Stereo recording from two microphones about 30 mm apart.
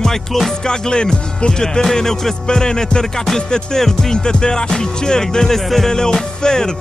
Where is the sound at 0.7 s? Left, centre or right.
Left.